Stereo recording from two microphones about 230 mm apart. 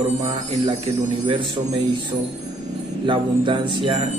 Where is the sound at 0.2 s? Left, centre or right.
Right.